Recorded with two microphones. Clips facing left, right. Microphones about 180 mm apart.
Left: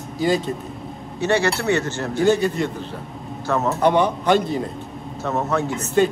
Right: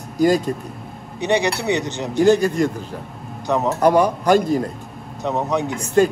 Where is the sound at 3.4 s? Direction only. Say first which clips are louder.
Right 2 dB; 15° right (ahead or behind).